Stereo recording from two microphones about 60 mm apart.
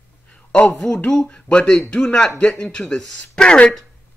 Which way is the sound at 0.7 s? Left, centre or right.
Centre.